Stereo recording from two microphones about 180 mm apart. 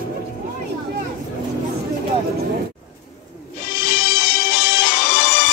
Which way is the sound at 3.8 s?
75° left (ahead or behind).